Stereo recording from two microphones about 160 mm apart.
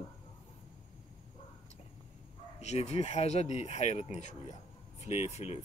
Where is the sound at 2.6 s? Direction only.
40° left (ahead or behind).